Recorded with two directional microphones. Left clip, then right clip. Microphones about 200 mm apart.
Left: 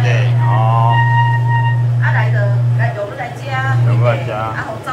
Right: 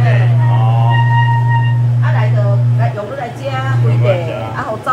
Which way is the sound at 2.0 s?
Centre (ahead or behind).